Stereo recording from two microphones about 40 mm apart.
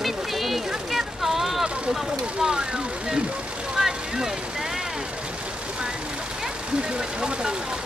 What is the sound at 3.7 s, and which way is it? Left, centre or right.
Vehicle, centre.